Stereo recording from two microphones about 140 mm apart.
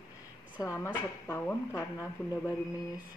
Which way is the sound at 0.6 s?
20° left (ahead or behind).